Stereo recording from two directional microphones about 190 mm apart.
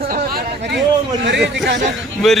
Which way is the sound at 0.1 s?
60° right (ahead or behind).